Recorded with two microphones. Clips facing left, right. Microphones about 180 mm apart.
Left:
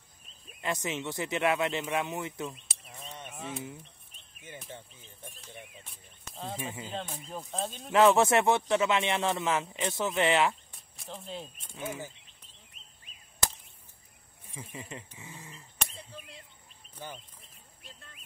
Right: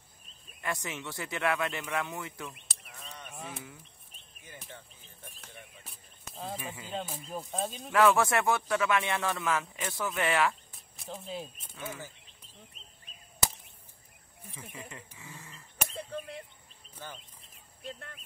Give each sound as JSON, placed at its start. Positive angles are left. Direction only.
{"t": 0.6, "sound": "speech", "side_deg": 20}
{"t": 3.0, "sound": "fowl", "side_deg": 25}
{"t": 5.9, "sound": "speech", "side_deg": 0}
{"t": 6.6, "sound": "speech", "side_deg": 25}
{"t": 6.9, "sound": "speech", "side_deg": -5}
{"t": 7.9, "sound": "speech", "side_deg": 25}
{"t": 10.7, "sound": "speech", "side_deg": 0}
{"t": 11.7, "sound": "speech", "side_deg": 20}
{"t": 14.5, "sound": "speech", "side_deg": 20}
{"t": 16.0, "sound": "a sound", "side_deg": -60}
{"t": 17.0, "sound": "speech", "side_deg": 15}
{"t": 17.8, "sound": "speech", "side_deg": -60}